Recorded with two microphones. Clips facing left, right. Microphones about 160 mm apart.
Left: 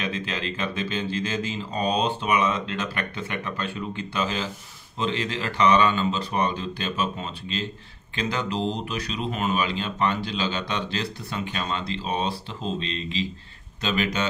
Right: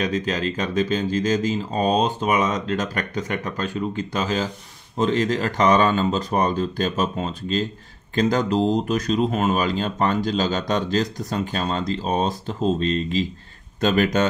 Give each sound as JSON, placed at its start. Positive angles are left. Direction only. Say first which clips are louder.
{"t": 0.0, "sound": "speech", "louder": "right 7 dB", "side_deg": -40}